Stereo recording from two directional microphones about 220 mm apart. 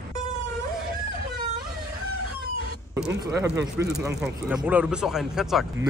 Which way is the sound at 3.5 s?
50° right (ahead or behind).